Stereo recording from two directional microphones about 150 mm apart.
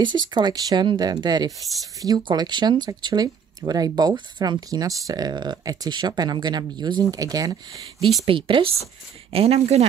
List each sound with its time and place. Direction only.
0.0 s speech: 30° right (ahead or behind)
8.0 s speech: centre (ahead or behind)
8.3 s speech: 35° right (ahead or behind)